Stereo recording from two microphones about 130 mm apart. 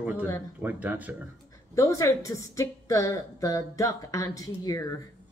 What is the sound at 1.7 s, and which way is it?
A woman's voice, 25° left (ahead or behind).